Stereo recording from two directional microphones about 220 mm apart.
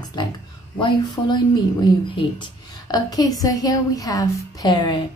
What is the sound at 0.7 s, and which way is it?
A woman's voice, 20° left (ahead or behind).